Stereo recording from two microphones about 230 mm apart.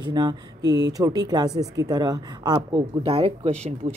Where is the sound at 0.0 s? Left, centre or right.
Centre.